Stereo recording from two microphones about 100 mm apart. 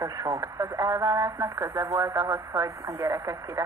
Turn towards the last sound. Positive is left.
turn(degrees=-35)  # may be behind; listen again after turning